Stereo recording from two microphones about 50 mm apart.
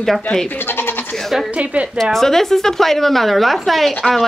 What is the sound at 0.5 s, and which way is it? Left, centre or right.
Speech, left.